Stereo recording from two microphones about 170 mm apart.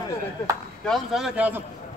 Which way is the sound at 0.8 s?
Centre (ahead or behind).